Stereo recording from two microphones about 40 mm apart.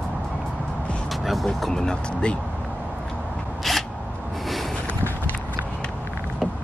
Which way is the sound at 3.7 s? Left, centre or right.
Centre.